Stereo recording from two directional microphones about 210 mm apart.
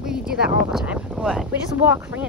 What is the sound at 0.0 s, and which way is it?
Speech, 5° right (ahead or behind).